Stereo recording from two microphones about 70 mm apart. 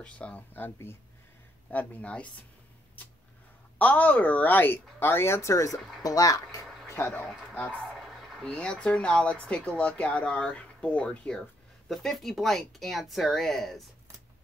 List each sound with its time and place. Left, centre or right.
0.0 s a woman's voice: centre
0.6 s speech: left
1.7 s a woman's voice: left
3.7 s a woman's voice: left
5.7 s speech: centre
6.0 s speech: left
6.6 s a sound: centre
8.2 s a sound: centre
8.5 s speech: centre